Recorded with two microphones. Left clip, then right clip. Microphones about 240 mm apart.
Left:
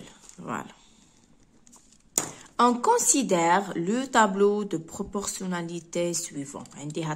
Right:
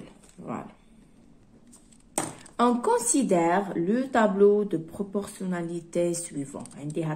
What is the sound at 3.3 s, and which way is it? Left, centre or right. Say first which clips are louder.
Speech: left 2 dB; left.